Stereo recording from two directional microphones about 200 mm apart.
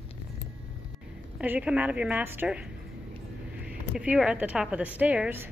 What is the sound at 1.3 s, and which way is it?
A woman's voice, 5° right (ahead or behind).